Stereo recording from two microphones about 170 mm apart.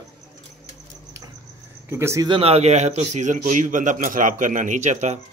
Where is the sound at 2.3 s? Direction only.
35° right (ahead or behind).